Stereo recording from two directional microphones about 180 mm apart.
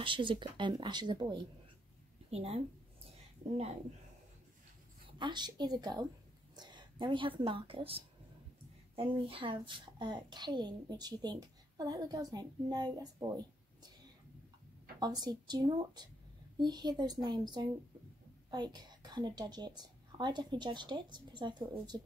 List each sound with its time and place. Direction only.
0.0 s a child's voice: 30° right (ahead or behind)
5.2 s a child's voice: 25° right (ahead or behind)
15.0 s a child's voice: 25° right (ahead or behind)